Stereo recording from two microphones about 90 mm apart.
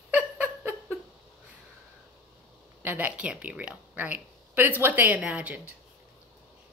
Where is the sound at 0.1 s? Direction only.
15° right (ahead or behind).